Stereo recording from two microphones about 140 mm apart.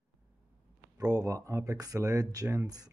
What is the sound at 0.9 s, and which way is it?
Speech, 25° right (ahead or behind).